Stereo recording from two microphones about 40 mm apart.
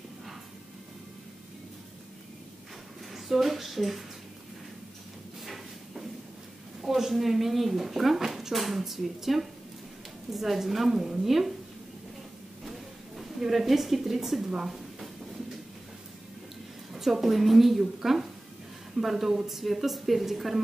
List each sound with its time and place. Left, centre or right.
3.1 s speech: centre
5.4 s drawer open or close: centre
6.8 s speech: centre
13.2 s a woman's voice: centre
16.9 s speech: centre